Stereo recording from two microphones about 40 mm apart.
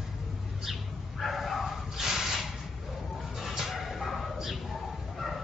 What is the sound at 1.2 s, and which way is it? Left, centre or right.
Bow-wow, centre.